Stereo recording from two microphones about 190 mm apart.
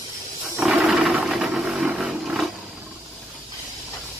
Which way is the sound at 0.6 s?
5° right (ahead or behind).